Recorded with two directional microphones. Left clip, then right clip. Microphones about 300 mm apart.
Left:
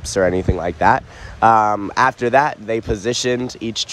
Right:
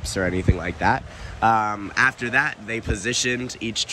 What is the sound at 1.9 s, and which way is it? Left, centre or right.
Speech, centre.